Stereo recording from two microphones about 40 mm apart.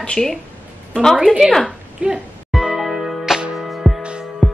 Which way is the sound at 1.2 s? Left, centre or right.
Centre.